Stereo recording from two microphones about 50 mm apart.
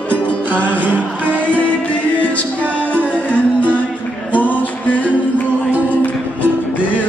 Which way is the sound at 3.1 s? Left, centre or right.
Left.